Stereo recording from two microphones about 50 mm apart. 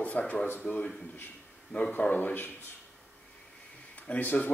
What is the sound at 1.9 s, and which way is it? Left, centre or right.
Speech, left.